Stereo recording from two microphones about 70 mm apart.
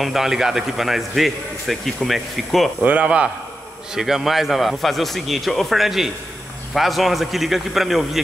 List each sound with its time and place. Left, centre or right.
0.0 s speech: centre
2.8 s a man's voice: right
3.9 s speech: centre